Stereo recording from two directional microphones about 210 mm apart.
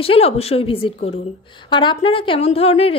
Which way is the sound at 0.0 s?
25° left (ahead or behind).